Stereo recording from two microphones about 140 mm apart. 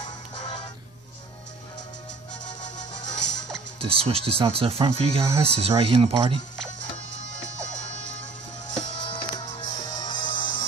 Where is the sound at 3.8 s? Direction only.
45° right (ahead or behind).